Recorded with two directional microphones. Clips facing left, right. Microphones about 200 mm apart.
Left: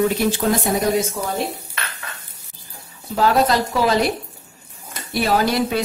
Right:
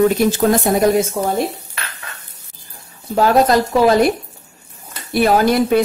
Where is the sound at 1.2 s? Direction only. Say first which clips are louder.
Right 6 dB; 60° right (ahead or behind).